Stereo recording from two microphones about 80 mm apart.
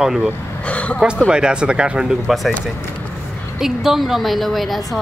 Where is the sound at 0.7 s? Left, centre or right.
Centre.